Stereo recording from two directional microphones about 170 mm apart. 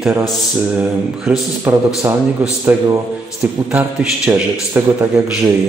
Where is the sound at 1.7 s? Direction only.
10° right (ahead or behind).